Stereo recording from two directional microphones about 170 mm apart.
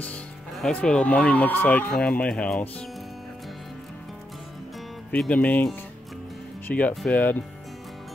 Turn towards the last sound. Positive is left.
turn(degrees=10)  # may be behind; listen again after turning